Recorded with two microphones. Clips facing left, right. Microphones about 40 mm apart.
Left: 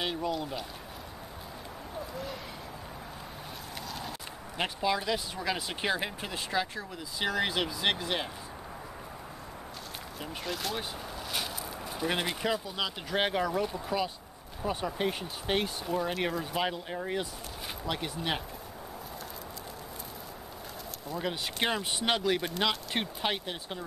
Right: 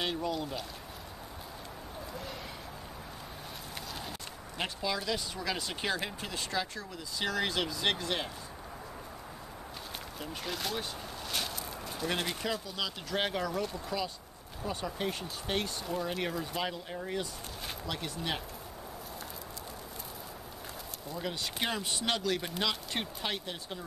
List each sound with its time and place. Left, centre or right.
0.0 s speech: centre
4.6 s speech: centre
10.4 s speech: centre
21.2 s speech: left